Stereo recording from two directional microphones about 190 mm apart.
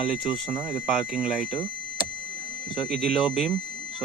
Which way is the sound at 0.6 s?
5° right (ahead or behind).